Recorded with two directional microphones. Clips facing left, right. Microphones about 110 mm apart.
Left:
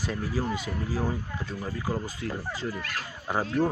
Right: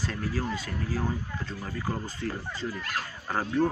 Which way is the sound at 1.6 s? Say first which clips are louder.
Left 2 dB; 5° left (ahead or behind).